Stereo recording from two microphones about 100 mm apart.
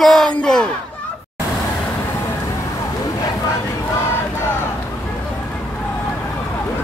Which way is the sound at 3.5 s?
30° left (ahead or behind).